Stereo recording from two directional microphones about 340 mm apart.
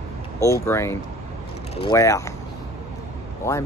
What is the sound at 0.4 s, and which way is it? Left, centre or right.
Speech, centre.